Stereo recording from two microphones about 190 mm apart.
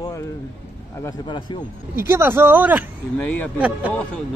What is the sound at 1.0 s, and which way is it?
Speech, 25° left (ahead or behind).